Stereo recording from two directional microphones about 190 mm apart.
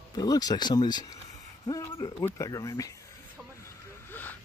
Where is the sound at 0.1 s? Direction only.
20° left (ahead or behind).